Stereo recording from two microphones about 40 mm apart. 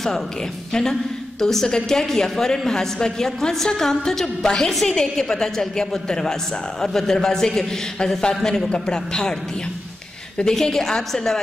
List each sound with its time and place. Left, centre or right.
1.4 s a woman's voice: centre
10.5 s a woman's voice: centre